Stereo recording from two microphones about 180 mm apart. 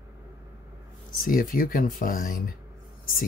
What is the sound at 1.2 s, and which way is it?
Speech, 50° left (ahead or behind).